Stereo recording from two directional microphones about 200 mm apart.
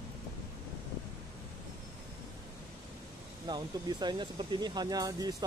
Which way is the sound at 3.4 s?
20° right (ahead or behind).